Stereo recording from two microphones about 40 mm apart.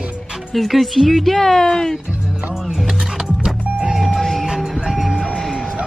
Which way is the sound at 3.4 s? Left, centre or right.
Centre.